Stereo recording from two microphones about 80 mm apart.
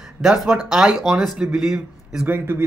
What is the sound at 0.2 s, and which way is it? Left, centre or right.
Speech, centre.